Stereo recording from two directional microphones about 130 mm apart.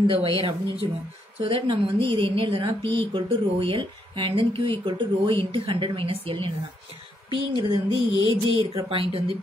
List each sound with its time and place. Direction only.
0.0 s speech: 40° right (ahead or behind)